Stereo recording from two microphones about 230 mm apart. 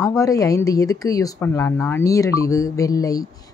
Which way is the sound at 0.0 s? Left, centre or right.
Centre.